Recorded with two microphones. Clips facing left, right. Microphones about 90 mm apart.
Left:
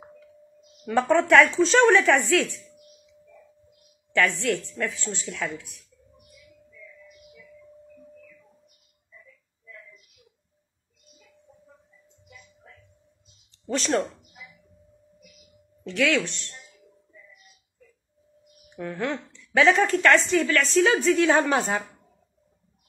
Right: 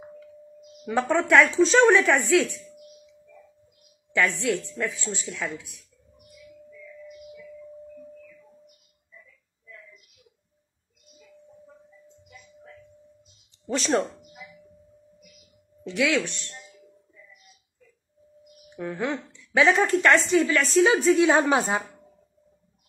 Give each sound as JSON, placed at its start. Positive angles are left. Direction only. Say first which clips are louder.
{"t": 0.8, "sound": "speech", "louder": "left 2 dB", "side_deg": 0}
{"t": 4.1, "sound": "speech", "louder": "left 1 dB", "side_deg": -5}
{"t": 13.7, "sound": "a sound", "louder": "right 1 dB", "side_deg": -15}
{"t": 15.8, "sound": "a woman's voice", "louder": "even", "side_deg": -10}
{"t": 18.8, "sound": "a woman's voice", "louder": "even", "side_deg": -10}